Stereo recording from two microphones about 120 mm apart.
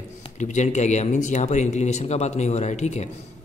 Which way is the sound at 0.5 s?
80° left.